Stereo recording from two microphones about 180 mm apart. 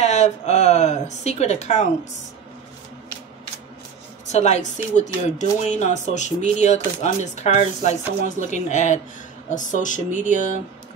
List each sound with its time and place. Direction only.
0.0 s speech: 40° left (ahead or behind)
4.3 s speech: 40° left (ahead or behind)